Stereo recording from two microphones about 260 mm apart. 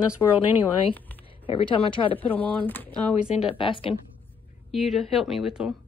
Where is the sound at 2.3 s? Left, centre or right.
Centre.